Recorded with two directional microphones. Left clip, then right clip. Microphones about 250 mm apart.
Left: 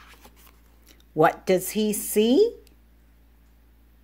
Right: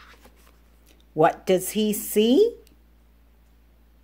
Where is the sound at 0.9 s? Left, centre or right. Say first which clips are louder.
Even; centre.